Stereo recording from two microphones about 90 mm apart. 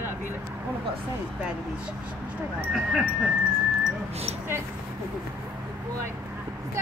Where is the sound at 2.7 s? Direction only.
Centre (ahead or behind).